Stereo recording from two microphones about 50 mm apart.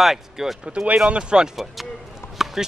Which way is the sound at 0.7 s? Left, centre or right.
Right.